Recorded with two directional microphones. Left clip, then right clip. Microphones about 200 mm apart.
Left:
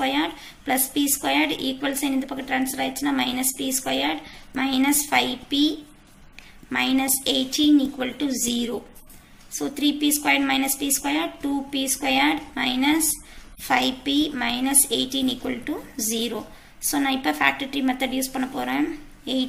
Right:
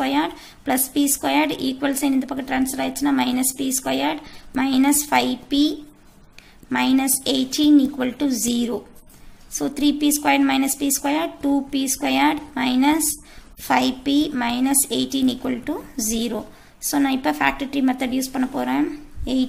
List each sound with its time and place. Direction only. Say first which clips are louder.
0.0 s a woman's voice: right 2 dB; 55° right (ahead or behind)